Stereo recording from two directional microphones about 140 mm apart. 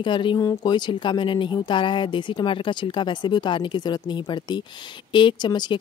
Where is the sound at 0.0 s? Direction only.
35° left (ahead or behind).